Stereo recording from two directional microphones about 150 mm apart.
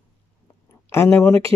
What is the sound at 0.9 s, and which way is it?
Speech, 15° left (ahead or behind).